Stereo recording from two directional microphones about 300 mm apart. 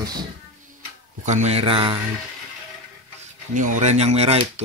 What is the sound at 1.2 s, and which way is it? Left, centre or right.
Speech, right.